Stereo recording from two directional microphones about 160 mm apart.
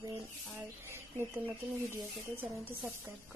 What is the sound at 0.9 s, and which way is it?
A woman's voice, 15° right (ahead or behind).